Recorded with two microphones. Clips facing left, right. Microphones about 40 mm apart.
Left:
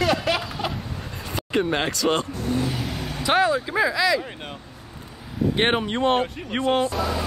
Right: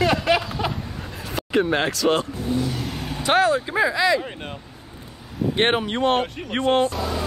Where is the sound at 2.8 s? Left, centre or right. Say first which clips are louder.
Even; centre.